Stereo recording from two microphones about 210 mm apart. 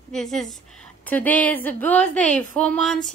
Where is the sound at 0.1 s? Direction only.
Centre (ahead or behind).